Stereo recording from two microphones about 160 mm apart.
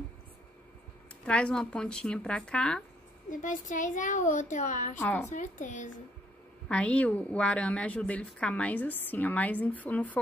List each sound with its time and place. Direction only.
1.2 s speech: 5° left (ahead or behind)
3.3 s a woman's voice: 55° left (ahead or behind)
4.9 s a woman's voice: 10° left (ahead or behind)
5.3 s a woman's voice: 50° left (ahead or behind)
6.7 s a woman's voice: 10° left (ahead or behind)